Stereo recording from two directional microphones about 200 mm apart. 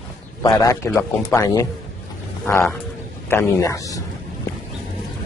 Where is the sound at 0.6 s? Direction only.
15° left (ahead or behind).